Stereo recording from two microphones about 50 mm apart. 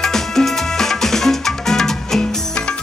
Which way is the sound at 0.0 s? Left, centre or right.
Centre.